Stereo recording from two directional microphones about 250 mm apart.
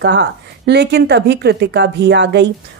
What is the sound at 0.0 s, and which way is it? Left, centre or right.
Speech, right.